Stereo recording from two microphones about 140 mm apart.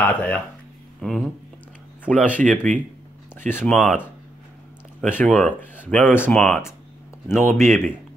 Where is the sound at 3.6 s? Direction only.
5° left (ahead or behind).